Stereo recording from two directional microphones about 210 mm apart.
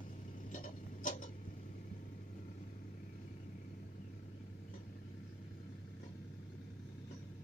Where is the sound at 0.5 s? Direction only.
35° left (ahead or behind).